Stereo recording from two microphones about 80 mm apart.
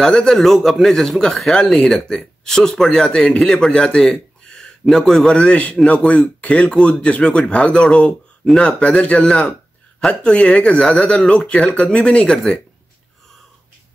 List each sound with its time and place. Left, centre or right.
0.0 s a man's voice: centre